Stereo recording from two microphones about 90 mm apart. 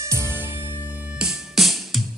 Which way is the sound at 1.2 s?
Centre (ahead or behind).